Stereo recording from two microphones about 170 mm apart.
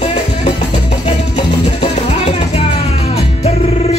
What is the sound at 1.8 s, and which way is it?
Music, 35° left (ahead or behind).